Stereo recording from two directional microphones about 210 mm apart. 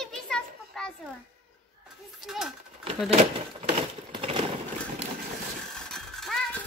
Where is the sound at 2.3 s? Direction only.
Centre (ahead or behind).